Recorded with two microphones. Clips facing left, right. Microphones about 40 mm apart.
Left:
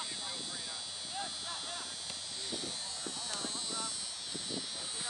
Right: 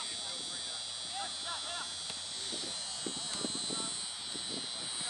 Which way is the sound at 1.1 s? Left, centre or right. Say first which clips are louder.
Right 1 dB; right.